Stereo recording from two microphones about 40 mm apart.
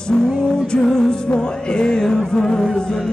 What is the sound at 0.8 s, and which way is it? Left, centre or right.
Music, centre.